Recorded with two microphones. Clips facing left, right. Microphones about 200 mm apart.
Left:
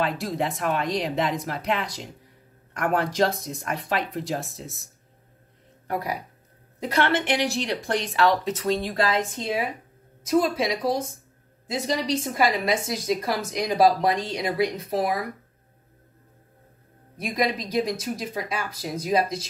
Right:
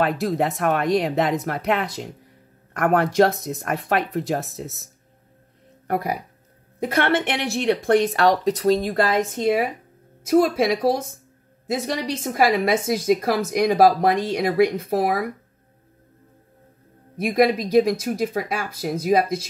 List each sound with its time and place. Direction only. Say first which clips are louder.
0.0 s a woman's voice: right 5 dB; 55° right (ahead or behind)
5.9 s a woman's voice: right 4 dB; 55° right (ahead or behind)
17.2 s a woman's voice: right 7 dB; 55° right (ahead or behind)